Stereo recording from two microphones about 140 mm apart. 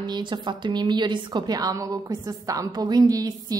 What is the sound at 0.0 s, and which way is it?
A woman's voice, 35° right (ahead or behind).